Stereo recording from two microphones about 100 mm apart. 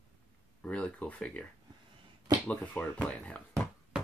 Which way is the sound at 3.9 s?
10° right (ahead or behind).